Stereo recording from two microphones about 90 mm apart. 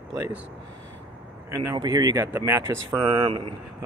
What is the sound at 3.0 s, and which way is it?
Speech, 70° right (ahead or behind).